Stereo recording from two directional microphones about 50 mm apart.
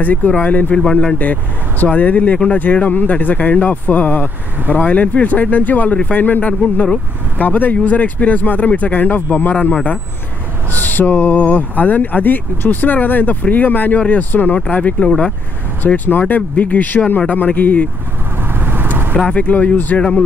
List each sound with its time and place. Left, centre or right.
0.0 s speech: left
10.7 s speech: left
15.0 s speech: centre
16.1 s speech: left
18.6 s vehicle: right
19.1 s speech: centre
19.4 s speech: left
19.9 s speech: left